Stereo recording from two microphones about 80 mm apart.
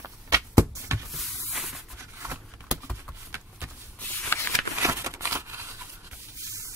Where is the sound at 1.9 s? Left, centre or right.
Right.